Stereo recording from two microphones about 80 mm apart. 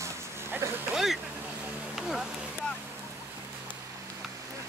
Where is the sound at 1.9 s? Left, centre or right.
Centre.